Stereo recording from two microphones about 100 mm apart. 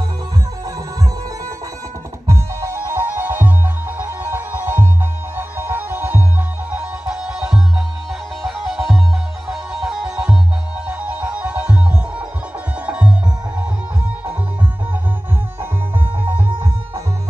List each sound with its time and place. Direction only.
2.2 s music: 30° right (ahead or behind)
6.7 s music: 10° right (ahead or behind)
16.3 s music: 15° right (ahead or behind)